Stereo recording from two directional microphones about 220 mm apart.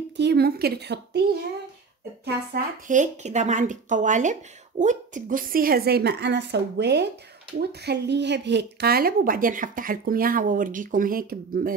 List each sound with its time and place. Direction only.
0.2 s a woman's voice: 50° right (ahead or behind)
2.2 s speech: 40° right (ahead or behind)